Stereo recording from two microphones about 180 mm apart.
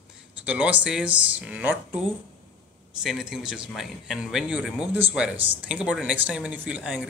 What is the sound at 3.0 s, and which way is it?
Speech, 5° right (ahead or behind).